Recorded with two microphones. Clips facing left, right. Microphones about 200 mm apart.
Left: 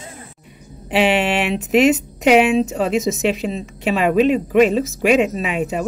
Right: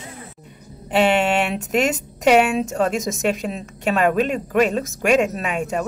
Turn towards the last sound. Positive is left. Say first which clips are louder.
# left 2 dB
turn(degrees=5)  # may be behind; listen again after turning